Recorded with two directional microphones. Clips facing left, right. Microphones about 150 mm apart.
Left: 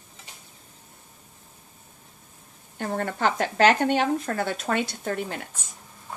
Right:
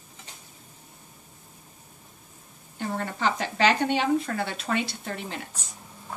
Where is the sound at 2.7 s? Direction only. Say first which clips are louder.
Left 3 dB; 50° left (ahead or behind).